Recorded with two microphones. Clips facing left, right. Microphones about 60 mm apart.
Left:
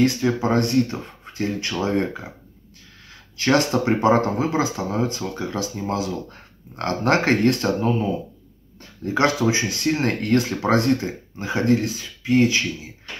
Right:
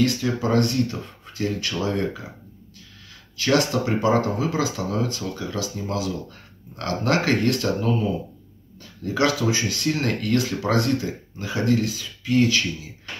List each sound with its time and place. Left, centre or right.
0.0 s speech: left
3.3 s speech: left